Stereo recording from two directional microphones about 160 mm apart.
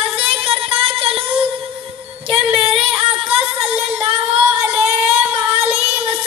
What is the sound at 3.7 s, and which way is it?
Female singing, 10° right (ahead or behind).